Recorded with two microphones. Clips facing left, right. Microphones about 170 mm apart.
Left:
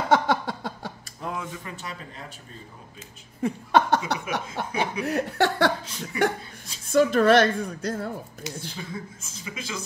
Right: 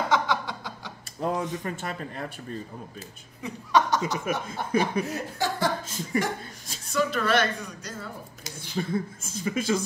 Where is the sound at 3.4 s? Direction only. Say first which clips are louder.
Left 2 dB; 55° left (ahead or behind).